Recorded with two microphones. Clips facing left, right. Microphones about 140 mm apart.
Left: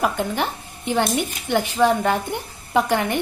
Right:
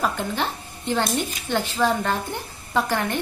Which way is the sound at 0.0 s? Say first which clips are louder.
Left 3 dB; 15° left (ahead or behind).